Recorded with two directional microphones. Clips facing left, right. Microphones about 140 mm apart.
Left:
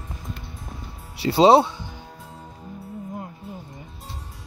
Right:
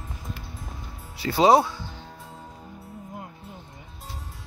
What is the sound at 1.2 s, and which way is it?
Speech, 30° left (ahead or behind).